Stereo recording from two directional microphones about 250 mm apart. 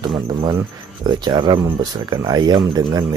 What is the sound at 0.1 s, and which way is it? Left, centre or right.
Speech, centre.